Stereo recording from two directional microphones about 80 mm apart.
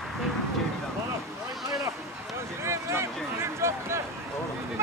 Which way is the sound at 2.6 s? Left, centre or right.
Right.